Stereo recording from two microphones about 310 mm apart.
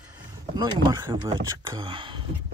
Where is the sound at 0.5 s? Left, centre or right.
Centre.